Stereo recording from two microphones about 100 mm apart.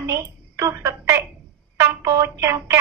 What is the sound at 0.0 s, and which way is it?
A woman's voice, 30° right (ahead or behind).